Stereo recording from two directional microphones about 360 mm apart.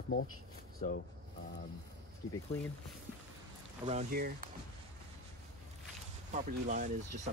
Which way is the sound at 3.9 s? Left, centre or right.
Right.